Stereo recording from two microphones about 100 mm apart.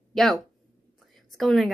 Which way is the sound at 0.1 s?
5° left (ahead or behind).